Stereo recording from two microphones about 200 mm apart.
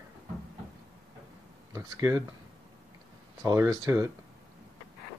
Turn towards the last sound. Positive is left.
turn(degrees=-15)  # may be behind; listen again after turning